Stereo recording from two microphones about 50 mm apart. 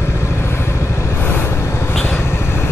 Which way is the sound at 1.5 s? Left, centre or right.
Left.